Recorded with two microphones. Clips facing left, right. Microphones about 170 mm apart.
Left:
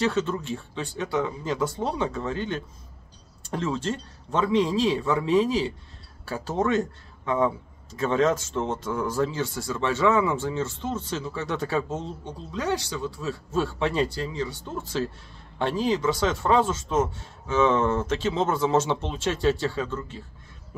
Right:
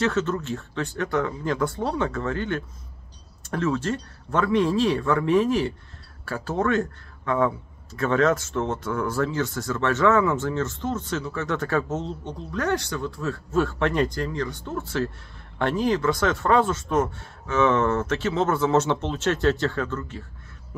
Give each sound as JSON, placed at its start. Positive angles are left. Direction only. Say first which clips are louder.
{"t": 0.0, "sound": "a man's voice", "louder": "right 1 dB", "side_deg": 15}
{"t": 3.6, "sound": "a man's voice", "louder": "right 4 dB", "side_deg": 20}